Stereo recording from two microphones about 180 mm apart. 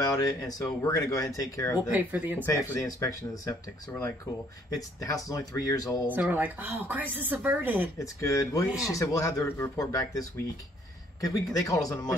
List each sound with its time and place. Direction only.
0.0 s speech: 20° left (ahead or behind)
1.9 s speech: 10° right (ahead or behind)
2.4 s speech: 15° left (ahead or behind)
4.7 s speech: 20° left (ahead or behind)
6.1 s speech: 10° right (ahead or behind)
8.0 s speech: 15° left (ahead or behind)